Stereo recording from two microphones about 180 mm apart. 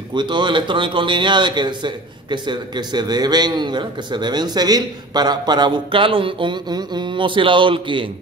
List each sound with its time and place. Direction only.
0.1 s speech: 25° right (ahead or behind)